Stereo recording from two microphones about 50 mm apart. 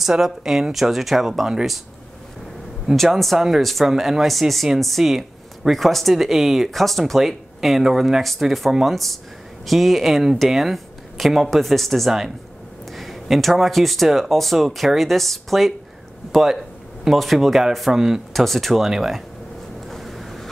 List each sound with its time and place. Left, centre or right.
0.0 s speech: centre
2.9 s speech: centre
19.9 s vehicle: centre